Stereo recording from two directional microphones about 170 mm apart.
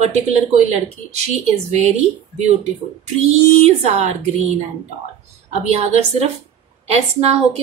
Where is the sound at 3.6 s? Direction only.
40° right (ahead or behind).